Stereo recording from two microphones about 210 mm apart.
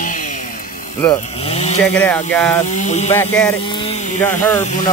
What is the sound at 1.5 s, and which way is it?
Speech, 30° left (ahead or behind).